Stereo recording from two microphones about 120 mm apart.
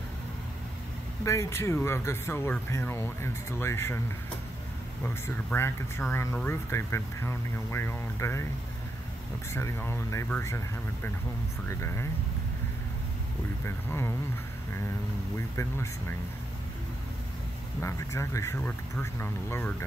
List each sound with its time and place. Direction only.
1.2 s speech: 25° left (ahead or behind)
5.0 s speech: 20° left (ahead or behind)
9.5 s speech: 20° left (ahead or behind)
11.6 s speech: 20° left (ahead or behind)
13.7 s speech: 20° left (ahead or behind)
15.3 s speech: 25° left (ahead or behind)
17.8 s speech: 25° left (ahead or behind)